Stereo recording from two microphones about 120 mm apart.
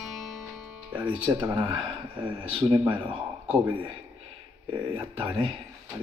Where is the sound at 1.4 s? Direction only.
45° right (ahead or behind).